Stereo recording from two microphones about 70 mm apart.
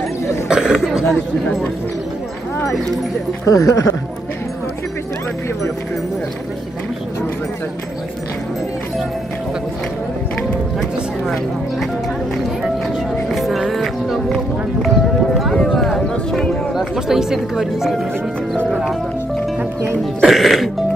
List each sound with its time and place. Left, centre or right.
0.5 s speech: centre
3.4 s speech: left
13.3 s music: centre
15.3 s clip-clop: centre
15.7 s a sound: centre
16.7 s speech: centre
20.2 s speech: centre